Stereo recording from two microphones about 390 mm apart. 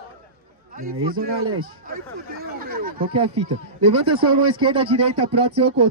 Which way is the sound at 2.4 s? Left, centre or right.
Right.